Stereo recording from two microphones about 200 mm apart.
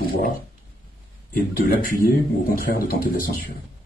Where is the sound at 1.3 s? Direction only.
45° left (ahead or behind).